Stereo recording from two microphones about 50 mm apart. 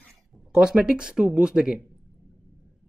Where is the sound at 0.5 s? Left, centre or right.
Centre.